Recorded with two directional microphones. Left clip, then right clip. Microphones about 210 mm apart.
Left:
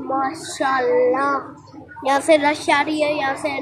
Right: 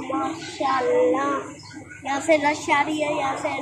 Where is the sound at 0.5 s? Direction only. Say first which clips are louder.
Left 3 dB; 20° left (ahead or behind).